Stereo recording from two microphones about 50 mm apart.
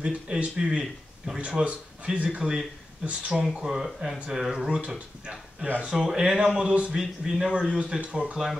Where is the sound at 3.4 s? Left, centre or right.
Centre.